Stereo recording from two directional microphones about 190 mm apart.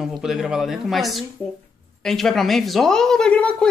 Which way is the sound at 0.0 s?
Centre (ahead or behind).